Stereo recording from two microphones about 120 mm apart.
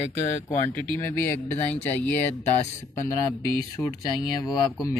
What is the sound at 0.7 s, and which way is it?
Speech, 20° left (ahead or behind).